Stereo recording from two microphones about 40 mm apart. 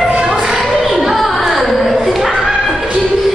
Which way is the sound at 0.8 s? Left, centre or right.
Centre.